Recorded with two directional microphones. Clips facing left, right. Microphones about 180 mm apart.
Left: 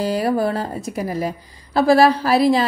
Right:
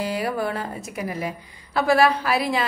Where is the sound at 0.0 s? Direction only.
35° left (ahead or behind).